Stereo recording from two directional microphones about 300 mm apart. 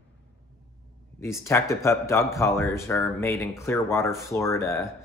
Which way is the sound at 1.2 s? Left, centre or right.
Centre.